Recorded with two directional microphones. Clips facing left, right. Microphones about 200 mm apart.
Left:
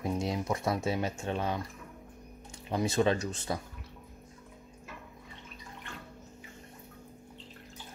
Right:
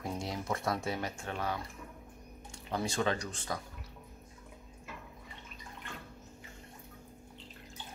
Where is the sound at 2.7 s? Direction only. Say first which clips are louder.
Left 5 dB; 20° left (ahead or behind).